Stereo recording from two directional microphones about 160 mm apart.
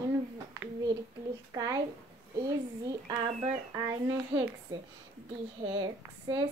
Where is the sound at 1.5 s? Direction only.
20° right (ahead or behind).